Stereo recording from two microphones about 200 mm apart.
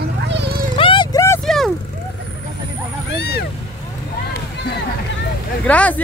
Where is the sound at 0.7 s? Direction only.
25° left (ahead or behind).